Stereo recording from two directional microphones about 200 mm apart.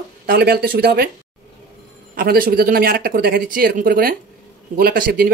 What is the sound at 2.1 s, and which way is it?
Speech, 45° right (ahead or behind).